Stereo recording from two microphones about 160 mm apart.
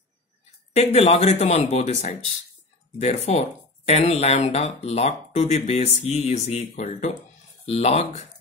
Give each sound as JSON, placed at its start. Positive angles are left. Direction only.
{"t": 0.7, "sound": "speech", "side_deg": 40}